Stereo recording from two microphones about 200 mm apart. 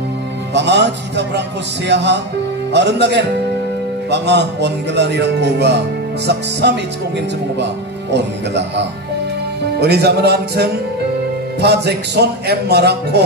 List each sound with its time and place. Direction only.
0.6 s speech: 60° right (ahead or behind)
8.1 s speech: 60° right (ahead or behind)